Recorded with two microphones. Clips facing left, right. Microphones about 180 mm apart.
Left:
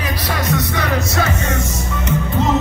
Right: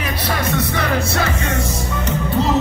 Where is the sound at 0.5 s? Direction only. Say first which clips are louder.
Left 2 dB; 25° right (ahead or behind).